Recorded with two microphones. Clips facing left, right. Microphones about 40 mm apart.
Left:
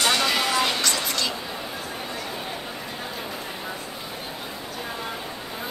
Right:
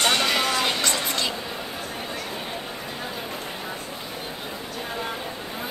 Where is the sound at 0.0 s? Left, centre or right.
Right.